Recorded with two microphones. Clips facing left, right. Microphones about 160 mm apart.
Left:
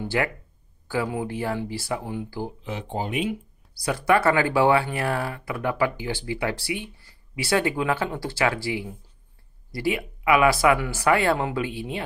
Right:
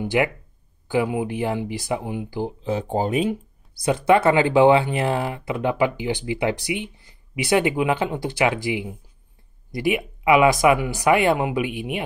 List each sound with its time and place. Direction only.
0.0 s speech: 15° right (ahead or behind)
2.6 s speech: 35° right (ahead or behind)
3.7 s speech: 20° right (ahead or behind)